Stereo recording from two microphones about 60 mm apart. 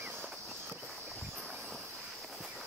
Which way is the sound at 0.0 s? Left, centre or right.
Right.